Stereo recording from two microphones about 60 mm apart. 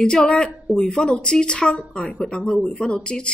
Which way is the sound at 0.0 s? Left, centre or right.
Centre.